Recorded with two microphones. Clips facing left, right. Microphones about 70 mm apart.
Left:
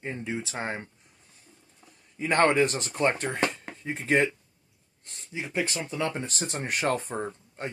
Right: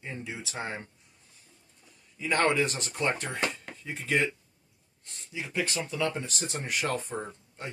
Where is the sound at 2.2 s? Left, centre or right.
Left.